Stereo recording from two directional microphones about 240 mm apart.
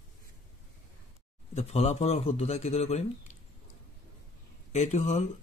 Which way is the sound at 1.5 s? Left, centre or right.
Left.